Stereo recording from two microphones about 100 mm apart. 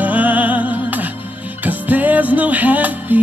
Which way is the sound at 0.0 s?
15° right (ahead or behind).